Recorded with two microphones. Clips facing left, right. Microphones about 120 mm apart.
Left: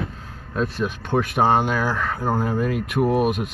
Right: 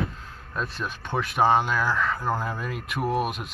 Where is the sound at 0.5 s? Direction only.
50° left (ahead or behind).